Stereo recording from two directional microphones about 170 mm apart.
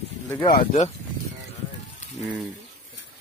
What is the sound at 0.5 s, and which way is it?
Speech, 45° left (ahead or behind).